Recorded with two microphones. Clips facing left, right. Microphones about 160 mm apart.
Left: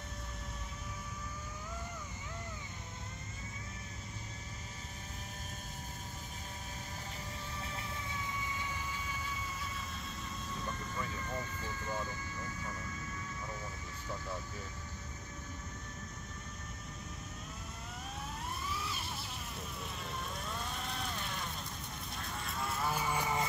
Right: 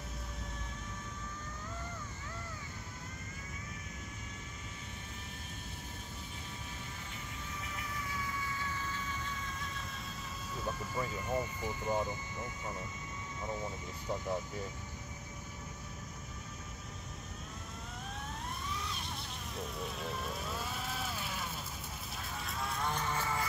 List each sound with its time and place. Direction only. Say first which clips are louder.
7.6 s vehicle: right 2 dB; 30° left (ahead or behind); by 9.8 s 5° left (ahead or behind)
10.5 s vehicle: right 5 dB; 5° right (ahead or behind)
13.5 s speech: right 5 dB; 20° right (ahead or behind)
18.7 s vehicle: even; 5° left (ahead or behind)
22.2 s moo: even; centre (ahead or behind); by 23.4 s 15° left (ahead or behind)